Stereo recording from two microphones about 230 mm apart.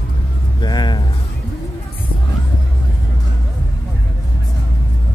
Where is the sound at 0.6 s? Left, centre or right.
Centre.